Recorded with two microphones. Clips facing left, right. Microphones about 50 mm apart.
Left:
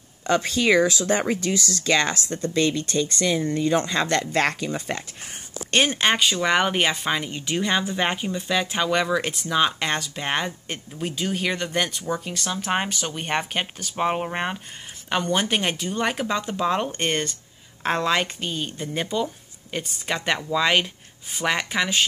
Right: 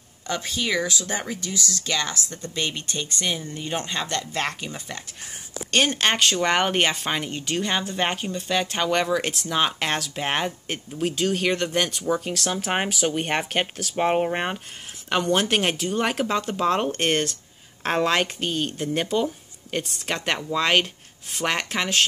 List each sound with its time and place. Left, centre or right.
0.3 s speech: left
4.7 s speech: left
5.7 s speech: left
6.0 s speech: centre
7.4 s speech: centre